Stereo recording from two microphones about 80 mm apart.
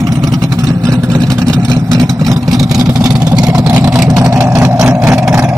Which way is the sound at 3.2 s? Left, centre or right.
Right.